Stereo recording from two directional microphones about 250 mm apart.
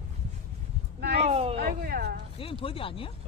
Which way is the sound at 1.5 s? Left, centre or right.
Right.